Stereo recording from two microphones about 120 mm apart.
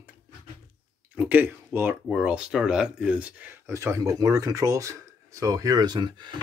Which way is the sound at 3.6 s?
25° right (ahead or behind).